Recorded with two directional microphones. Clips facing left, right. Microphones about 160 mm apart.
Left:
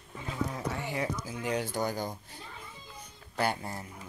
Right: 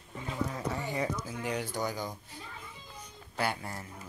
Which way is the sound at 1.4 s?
25° left (ahead or behind).